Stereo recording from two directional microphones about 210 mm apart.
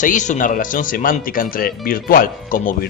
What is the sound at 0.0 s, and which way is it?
Speech, 35° left (ahead or behind).